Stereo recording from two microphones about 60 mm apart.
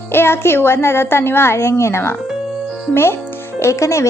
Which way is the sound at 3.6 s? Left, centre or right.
Left.